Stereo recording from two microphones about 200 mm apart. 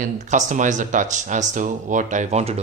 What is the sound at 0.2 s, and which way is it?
Speech, 35° right (ahead or behind).